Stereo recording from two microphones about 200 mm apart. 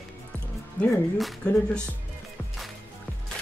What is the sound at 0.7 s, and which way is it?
Speech, 5° left (ahead or behind).